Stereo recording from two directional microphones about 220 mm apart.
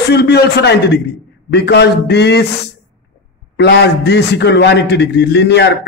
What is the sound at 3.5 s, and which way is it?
A man's voice, 50° left (ahead or behind).